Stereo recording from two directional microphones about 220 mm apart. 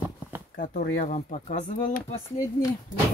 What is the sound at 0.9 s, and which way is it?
Speech, 35° left (ahead or behind).